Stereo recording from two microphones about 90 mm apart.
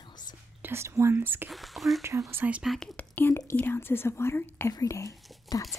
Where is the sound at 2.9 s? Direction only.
25° left (ahead or behind).